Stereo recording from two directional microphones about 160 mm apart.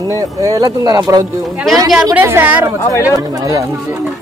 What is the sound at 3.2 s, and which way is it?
Speech, 20° right (ahead or behind).